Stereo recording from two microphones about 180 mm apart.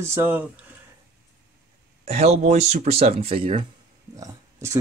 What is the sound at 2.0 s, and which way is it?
Speech, 35° right (ahead or behind).